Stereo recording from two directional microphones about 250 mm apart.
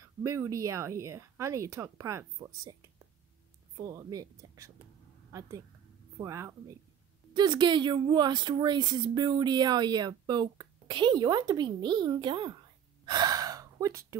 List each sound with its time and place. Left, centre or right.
0.2 s a woman's voice: centre
6.1 s a woman's voice: centre
13.0 s gasp: centre